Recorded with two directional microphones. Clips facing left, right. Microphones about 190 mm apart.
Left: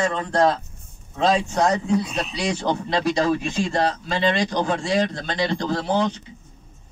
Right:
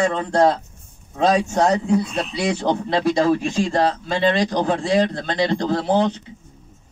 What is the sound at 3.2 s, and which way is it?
A man's voice, 30° right (ahead or behind).